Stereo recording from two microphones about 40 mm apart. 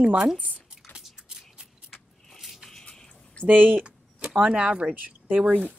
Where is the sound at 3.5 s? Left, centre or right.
Right.